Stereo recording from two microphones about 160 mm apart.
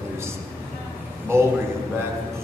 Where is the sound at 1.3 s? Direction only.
15° right (ahead or behind).